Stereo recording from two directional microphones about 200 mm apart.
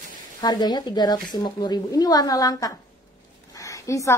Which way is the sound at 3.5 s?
15° left (ahead or behind).